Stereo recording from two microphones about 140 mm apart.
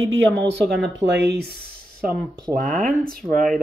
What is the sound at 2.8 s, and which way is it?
Speech, 90° right.